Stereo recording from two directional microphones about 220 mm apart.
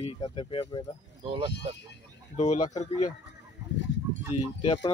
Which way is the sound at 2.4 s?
30° left (ahead or behind).